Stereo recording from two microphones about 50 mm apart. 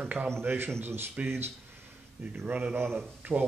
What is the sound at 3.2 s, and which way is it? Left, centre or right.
Speech, right.